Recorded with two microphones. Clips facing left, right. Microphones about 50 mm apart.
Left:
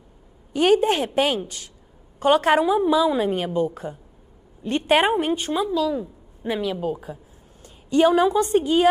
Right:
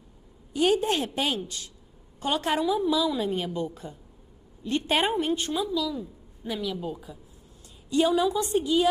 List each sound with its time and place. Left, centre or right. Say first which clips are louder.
0.5 s a woman's voice: left 6 dB; left